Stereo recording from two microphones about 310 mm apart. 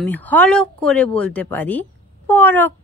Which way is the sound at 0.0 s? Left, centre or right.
Centre.